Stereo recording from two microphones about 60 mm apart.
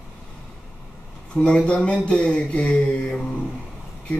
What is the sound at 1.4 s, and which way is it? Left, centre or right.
Mantra, centre.